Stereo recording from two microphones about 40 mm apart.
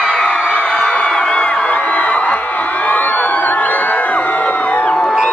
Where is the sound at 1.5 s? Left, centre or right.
Left.